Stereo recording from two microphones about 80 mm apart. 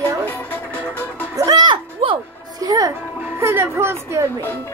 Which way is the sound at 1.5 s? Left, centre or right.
Right.